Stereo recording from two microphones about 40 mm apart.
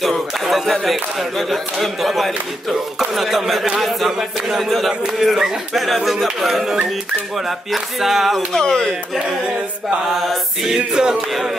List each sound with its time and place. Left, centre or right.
0.0 s a sound: centre
1.4 s speech: centre
7.3 s speech: centre
8.5 s speech: centre
10.2 s speech: centre
10.7 s music: centre